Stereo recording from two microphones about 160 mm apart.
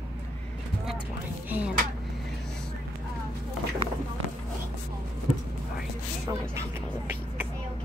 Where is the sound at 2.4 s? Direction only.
5° left (ahead or behind).